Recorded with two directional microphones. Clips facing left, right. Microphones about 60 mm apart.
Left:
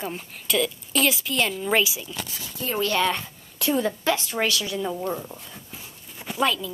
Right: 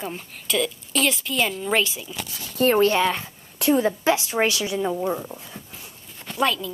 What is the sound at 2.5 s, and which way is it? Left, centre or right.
Speech, right.